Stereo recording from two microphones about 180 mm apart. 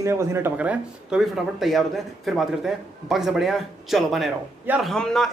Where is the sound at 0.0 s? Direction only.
15° right (ahead or behind).